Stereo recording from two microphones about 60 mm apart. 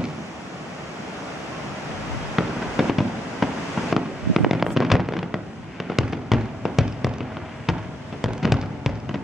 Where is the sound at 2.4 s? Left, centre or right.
Centre.